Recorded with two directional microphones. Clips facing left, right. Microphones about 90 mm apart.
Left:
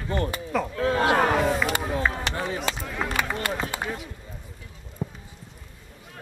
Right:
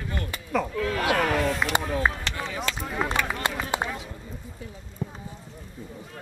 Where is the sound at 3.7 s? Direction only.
20° right (ahead or behind).